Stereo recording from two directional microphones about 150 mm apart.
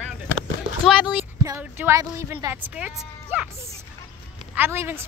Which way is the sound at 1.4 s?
20° right (ahead or behind).